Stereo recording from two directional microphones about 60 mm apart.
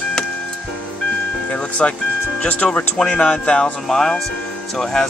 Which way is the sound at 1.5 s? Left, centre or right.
Left.